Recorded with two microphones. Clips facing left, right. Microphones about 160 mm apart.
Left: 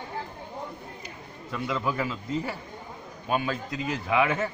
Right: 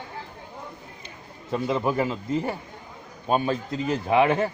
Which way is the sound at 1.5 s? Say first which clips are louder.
Right 5 dB; 30° right (ahead or behind).